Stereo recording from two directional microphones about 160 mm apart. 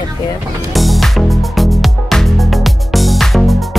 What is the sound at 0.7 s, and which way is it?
Music, centre (ahead or behind).